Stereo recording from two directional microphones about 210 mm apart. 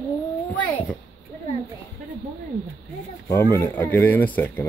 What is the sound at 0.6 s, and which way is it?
Speech, 5° left (ahead or behind).